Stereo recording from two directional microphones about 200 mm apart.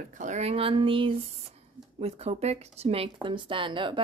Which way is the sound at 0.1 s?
40° right (ahead or behind).